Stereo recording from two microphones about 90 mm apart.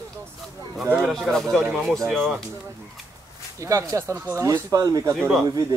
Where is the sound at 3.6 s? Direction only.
35° right (ahead or behind).